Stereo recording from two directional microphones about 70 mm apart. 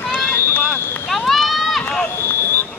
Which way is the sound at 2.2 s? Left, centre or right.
Left.